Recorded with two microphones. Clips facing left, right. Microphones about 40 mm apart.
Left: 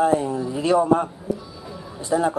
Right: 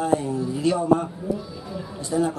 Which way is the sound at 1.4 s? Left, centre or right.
Centre.